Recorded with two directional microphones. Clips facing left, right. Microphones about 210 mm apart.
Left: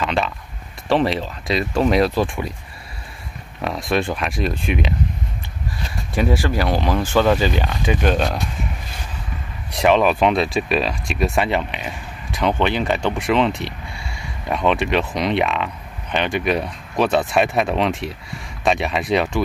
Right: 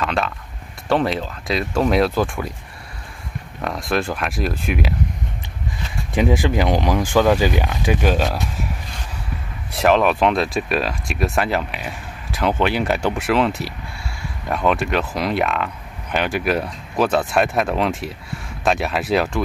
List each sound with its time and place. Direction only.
0.0 s a sound: centre (ahead or behind)
0.8 s speech: centre (ahead or behind)
3.6 s speech: centre (ahead or behind)
6.1 s speech: 20° right (ahead or behind)
9.7 s speech: centre (ahead or behind)